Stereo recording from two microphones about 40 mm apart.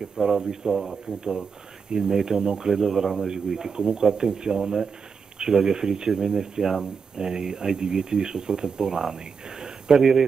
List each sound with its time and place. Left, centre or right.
0.0 s speech: centre
2.8 s speech: centre